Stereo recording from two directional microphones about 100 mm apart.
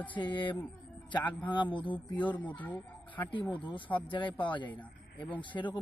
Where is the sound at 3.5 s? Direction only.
55° left (ahead or behind).